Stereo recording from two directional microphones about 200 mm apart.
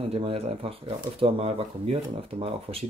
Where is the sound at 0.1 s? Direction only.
30° right (ahead or behind).